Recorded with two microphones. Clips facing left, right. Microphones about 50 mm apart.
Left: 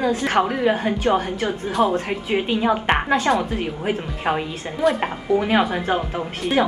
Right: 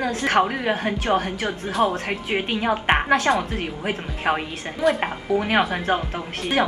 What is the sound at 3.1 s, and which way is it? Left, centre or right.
Speech, centre.